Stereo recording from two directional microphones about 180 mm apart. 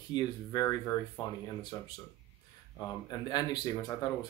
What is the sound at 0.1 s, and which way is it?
Speech, 20° left (ahead or behind).